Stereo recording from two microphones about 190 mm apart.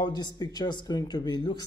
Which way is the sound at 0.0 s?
20° left (ahead or behind).